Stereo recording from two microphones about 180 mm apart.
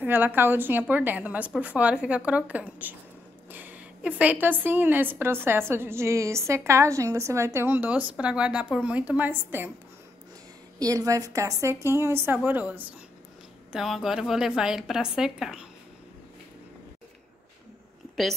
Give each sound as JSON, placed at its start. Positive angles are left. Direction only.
{"t": 0.0, "sound": "a woman's voice", "side_deg": -10}
{"t": 10.8, "sound": "a woman's voice", "side_deg": -20}